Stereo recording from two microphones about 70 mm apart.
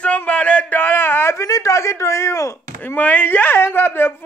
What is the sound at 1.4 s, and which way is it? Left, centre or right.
Chop, left.